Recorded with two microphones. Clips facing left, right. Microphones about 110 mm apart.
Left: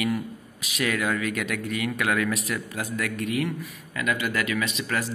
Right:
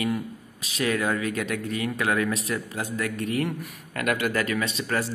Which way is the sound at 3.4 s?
50° right (ahead or behind).